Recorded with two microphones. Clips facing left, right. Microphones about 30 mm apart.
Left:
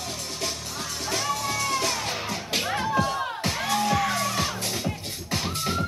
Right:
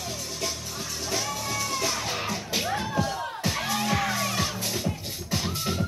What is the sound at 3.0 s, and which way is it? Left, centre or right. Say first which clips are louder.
Music: left 3 dB; left.